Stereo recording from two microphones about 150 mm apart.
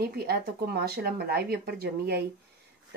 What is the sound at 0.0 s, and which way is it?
Speech, 90° right.